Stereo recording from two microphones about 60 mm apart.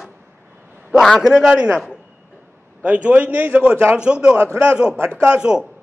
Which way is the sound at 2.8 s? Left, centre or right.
Right.